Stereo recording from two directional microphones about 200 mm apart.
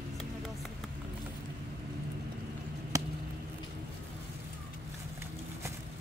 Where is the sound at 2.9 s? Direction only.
15° right (ahead or behind).